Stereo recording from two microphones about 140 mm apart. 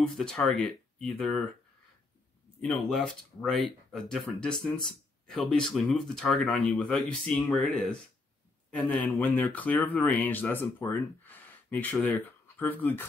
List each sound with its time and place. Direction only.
0.0 s speech: 5° left (ahead or behind)
2.6 s speech: 5° left (ahead or behind)
8.8 s speech: 15° left (ahead or behind)